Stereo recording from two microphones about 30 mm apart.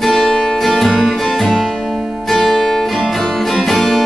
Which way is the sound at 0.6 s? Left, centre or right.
Centre.